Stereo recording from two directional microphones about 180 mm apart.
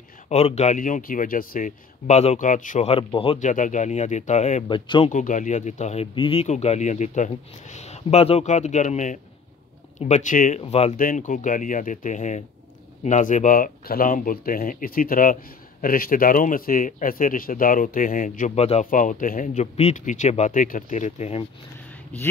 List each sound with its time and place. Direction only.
0.3 s speech: 35° left (ahead or behind)
3.3 s speech: 45° left (ahead or behind)
4.6 s speech: 25° left (ahead or behind)
5.1 s speech: 45° left (ahead or behind)
10.6 s speech: 35° left (ahead or behind)
11.0 s speech: 45° left (ahead or behind)
18.9 s speech: 50° left (ahead or behind)